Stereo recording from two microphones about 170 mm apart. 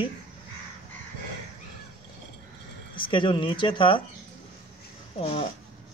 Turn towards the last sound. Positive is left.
turn(degrees=35)  # may be behind; listen again after turning